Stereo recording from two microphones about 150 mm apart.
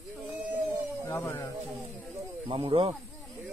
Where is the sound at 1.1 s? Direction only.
15° left (ahead or behind).